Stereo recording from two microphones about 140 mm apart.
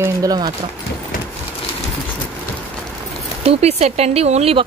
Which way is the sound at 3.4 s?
45° right (ahead or behind).